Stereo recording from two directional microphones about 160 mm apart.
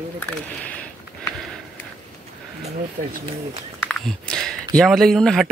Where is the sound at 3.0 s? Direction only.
55° right (ahead or behind).